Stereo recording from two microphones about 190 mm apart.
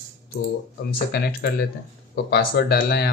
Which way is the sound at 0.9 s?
55° left (ahead or behind).